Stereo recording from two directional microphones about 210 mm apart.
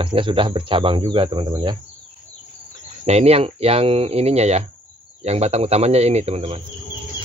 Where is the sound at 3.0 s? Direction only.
30° right (ahead or behind).